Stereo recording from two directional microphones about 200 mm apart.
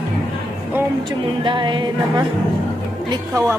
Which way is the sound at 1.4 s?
25° right (ahead or behind).